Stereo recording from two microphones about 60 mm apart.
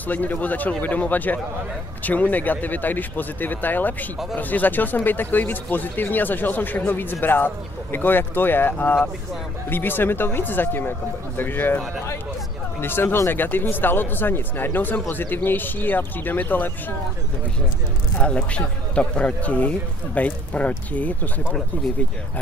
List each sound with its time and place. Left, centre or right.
0.0 s speech: left
12.8 s speech: left
18.2 s speech: centre